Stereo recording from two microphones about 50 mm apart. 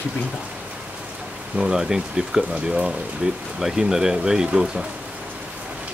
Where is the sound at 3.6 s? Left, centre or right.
Centre.